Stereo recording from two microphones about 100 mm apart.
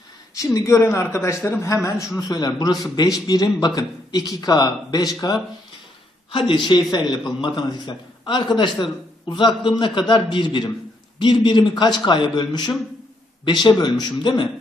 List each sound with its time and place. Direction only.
0.4 s a man's voice: 30° left (ahead or behind)
6.3 s a man's voice: 55° left (ahead or behind)